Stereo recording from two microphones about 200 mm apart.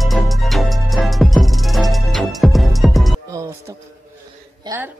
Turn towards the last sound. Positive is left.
turn(degrees=-20)  # may be behind; listen again after turning